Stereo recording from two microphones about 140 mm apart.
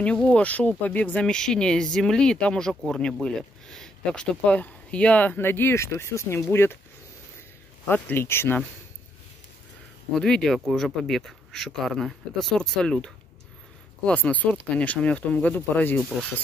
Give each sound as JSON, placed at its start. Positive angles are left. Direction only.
{"t": 0.0, "sound": "speech", "side_deg": 10}
{"t": 7.9, "sound": "speech", "side_deg": 15}
{"t": 10.1, "sound": "speech", "side_deg": 5}